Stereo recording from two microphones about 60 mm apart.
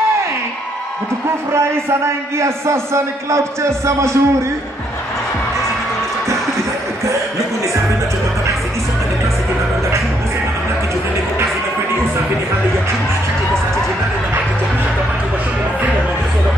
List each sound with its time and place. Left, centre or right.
2.3 s a man's voice: right